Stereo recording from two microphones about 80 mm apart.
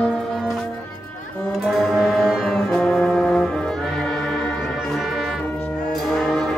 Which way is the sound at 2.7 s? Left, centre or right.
Centre.